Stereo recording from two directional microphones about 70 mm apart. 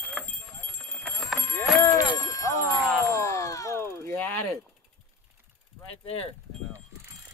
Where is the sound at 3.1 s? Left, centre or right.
Left.